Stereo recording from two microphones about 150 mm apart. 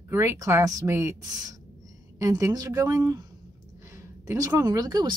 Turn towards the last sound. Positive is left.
turn(degrees=-25)  # may be behind; listen again after turning